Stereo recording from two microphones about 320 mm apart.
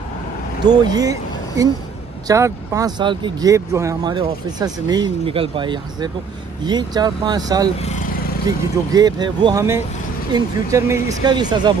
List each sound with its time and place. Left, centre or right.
0.7 s speech: centre
2.2 s speech: centre
7.8 s vehicle: left
8.5 s speech: centre